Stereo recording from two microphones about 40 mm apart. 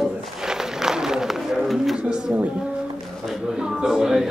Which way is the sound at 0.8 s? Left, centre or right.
Centre.